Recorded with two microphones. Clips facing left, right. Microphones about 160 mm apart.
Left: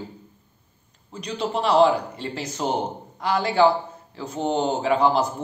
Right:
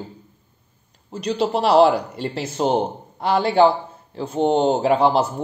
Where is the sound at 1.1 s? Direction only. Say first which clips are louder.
Right 5 dB; 35° right (ahead or behind).